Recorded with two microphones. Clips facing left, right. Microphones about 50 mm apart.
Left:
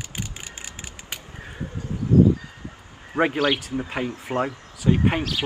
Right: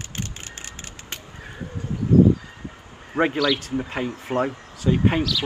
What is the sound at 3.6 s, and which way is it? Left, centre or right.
Speech, centre.